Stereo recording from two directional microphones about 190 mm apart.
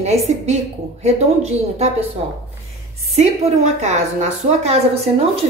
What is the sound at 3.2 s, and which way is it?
A woman's voice, 35° right (ahead or behind).